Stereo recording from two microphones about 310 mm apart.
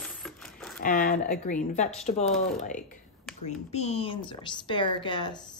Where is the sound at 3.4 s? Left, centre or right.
Left.